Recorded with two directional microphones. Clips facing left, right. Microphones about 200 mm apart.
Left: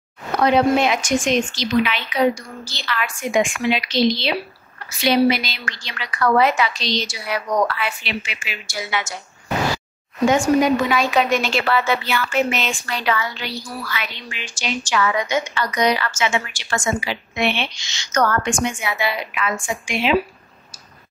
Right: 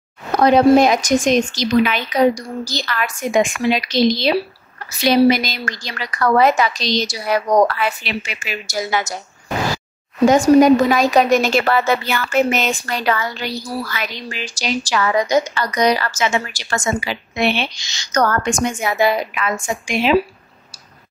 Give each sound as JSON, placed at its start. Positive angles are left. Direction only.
{"t": 0.4, "sound": "a woman's voice", "side_deg": -40}
{"t": 10.2, "sound": "a woman's voice", "side_deg": -40}